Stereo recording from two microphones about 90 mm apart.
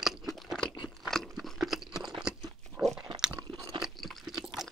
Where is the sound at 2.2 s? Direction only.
5° right (ahead or behind).